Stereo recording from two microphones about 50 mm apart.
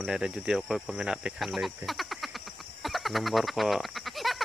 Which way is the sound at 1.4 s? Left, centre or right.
Centre.